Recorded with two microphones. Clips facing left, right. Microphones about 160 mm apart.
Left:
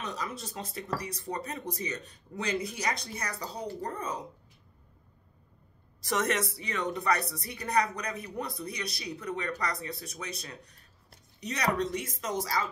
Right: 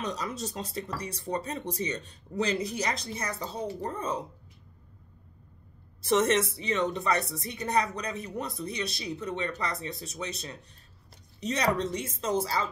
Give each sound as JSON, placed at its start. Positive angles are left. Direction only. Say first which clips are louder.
{"t": 0.2, "sound": "speech", "louder": "right 3 dB", "side_deg": -30}
{"t": 6.0, "sound": "speech", "louder": "right 5 dB", "side_deg": -30}